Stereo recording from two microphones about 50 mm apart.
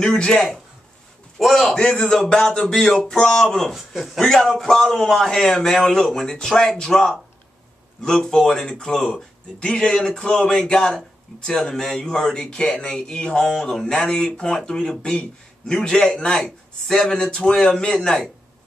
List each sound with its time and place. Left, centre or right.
0.0 s speech: centre
1.4 s a man's voice: centre
1.7 s speech: centre
3.7 s a man's voice: centre